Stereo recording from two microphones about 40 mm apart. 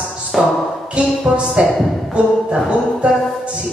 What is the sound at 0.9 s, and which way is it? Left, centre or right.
Speech, right.